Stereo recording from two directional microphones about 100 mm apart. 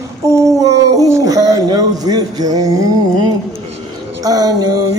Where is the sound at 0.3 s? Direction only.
35° right (ahead or behind).